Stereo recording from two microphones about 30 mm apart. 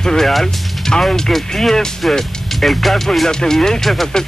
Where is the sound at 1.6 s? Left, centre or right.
Centre.